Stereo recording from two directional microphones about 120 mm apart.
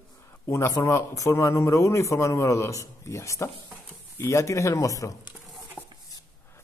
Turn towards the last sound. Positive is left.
turn(degrees=25)  # may be behind; listen again after turning